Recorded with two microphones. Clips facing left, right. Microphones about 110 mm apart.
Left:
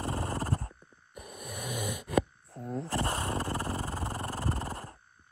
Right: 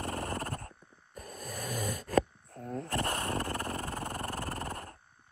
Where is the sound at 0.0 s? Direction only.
30° left (ahead or behind).